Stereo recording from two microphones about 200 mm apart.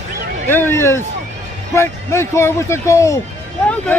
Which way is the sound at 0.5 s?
10° left (ahead or behind).